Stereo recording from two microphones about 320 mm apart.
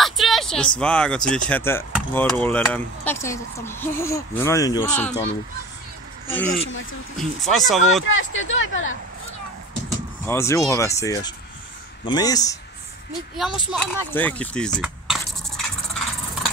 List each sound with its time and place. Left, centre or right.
0.0 s a sound: centre
0.7 s speech: centre
6.3 s speech: centre
8.1 s speech: left
10.2 s speech: centre
13.7 s speech: centre
14.8 s scratch: centre